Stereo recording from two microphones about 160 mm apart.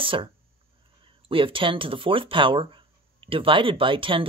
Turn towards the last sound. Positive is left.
turn(degrees=-35)  # may be behind; listen again after turning